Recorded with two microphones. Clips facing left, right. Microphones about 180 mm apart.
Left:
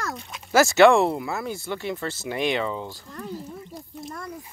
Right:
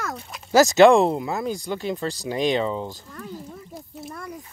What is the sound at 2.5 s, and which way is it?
Speech, 25° right (ahead or behind).